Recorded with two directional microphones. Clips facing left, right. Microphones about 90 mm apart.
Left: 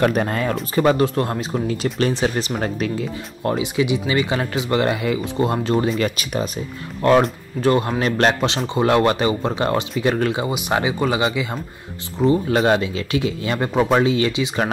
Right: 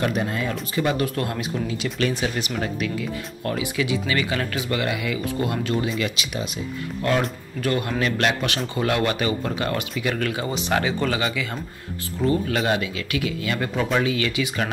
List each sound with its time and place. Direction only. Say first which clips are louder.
0.0 s speech: left 5 dB; 55° left (ahead or behind); by 12.5 s 20° left (ahead or behind)
12.5 s speech: left 6 dB; 35° left (ahead or behind)